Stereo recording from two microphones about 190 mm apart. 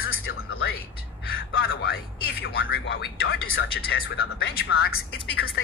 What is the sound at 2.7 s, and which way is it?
Speech, 65° left (ahead or behind).